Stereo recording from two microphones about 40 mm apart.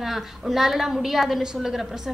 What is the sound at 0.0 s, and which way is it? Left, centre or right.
A woman's voice, centre.